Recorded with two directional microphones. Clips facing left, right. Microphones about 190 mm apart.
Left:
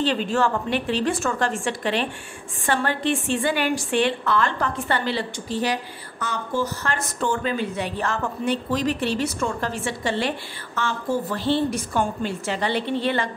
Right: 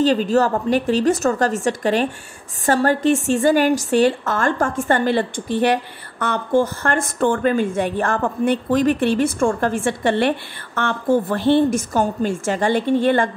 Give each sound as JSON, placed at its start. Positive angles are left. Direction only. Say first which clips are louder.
{"t": 0.0, "sound": "a woman's voice", "louder": "right 6 dB", "side_deg": -40}